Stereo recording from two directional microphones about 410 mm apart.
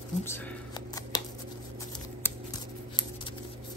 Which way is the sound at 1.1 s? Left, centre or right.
Centre.